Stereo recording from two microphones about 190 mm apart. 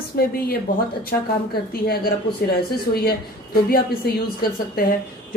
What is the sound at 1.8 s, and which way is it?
A woman's voice, 55° left (ahead or behind).